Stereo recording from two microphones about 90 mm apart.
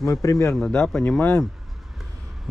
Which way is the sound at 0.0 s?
35° left (ahead or behind).